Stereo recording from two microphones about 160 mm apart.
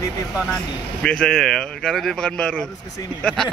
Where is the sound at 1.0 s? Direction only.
5° left (ahead or behind).